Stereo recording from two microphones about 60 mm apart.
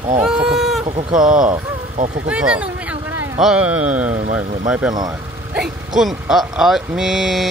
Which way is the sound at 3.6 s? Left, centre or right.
Right.